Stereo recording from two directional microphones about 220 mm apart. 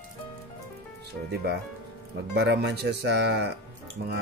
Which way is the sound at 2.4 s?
50° right (ahead or behind).